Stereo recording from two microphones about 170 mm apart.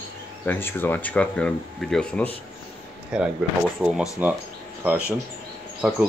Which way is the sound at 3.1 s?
5° right (ahead or behind).